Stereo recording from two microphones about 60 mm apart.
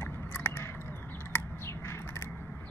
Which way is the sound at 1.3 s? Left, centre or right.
Left.